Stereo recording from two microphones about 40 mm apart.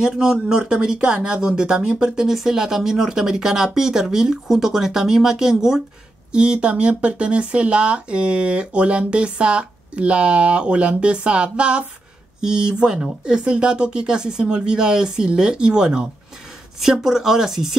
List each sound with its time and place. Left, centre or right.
0.0 s speech: centre